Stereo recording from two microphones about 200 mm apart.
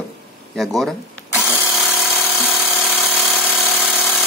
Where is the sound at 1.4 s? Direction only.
10° left (ahead or behind).